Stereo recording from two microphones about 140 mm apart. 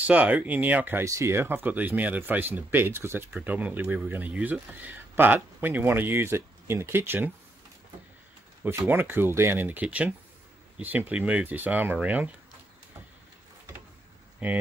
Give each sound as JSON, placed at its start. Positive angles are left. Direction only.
{"t": 0.0, "sound": "speech", "side_deg": -10}
{"t": 8.6, "sound": "speech", "side_deg": -15}
{"t": 14.4, "sound": "speech", "side_deg": -10}